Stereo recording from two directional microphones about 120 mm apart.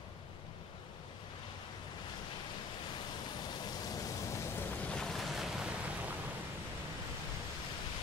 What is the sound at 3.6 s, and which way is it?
Rain, 35° left (ahead or behind).